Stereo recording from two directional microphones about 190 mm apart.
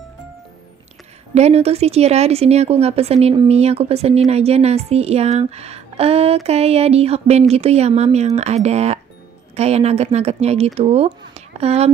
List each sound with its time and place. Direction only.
1.3 s a woman's voice: 35° right (ahead or behind)